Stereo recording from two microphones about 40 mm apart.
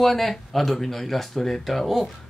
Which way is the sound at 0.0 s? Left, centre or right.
Centre.